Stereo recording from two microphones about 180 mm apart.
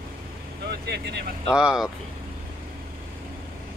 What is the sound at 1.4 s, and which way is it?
Speech, 5° right (ahead or behind).